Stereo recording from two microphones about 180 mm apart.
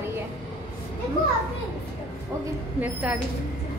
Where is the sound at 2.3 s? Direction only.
20° right (ahead or behind).